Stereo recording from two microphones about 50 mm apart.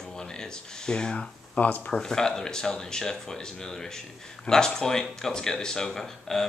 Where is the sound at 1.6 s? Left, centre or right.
Left.